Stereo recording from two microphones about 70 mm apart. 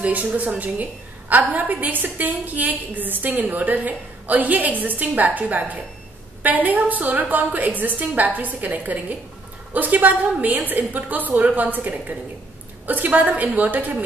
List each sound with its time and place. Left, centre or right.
0.0 s a woman's voice: right